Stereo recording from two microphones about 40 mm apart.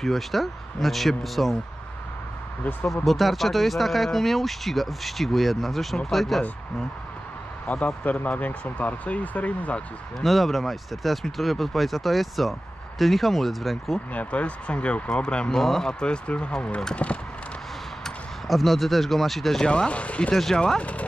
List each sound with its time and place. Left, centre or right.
0.0 s speech: centre
3.1 s speech: centre
7.6 s speech: left
10.2 s speech: centre
14.1 s speech: left
15.6 s speech: centre; by 17.2 s left
18.5 s speech: centre
19.7 s speech: left